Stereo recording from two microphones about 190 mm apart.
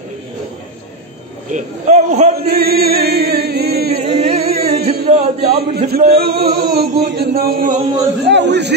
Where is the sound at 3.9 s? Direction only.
30° right (ahead or behind).